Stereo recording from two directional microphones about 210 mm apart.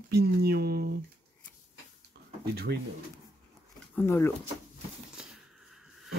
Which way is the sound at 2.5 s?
50° right (ahead or behind).